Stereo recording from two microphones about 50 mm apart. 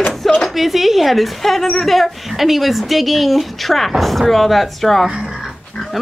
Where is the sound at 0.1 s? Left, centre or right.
Centre.